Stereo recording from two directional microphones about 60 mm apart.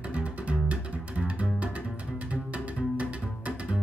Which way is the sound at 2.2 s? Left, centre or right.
Right.